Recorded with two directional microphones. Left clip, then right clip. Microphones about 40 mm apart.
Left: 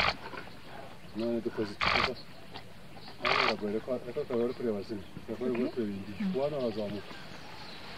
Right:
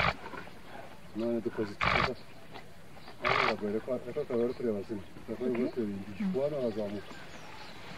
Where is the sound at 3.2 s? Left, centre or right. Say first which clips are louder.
Even; centre.